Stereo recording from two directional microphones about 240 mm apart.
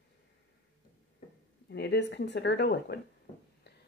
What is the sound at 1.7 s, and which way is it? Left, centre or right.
Speech, left.